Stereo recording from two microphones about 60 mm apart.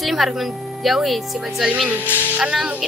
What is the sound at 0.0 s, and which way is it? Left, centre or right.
A woman's voice, centre.